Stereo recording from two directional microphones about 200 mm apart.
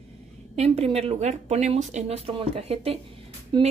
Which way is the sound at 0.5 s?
30° right (ahead or behind).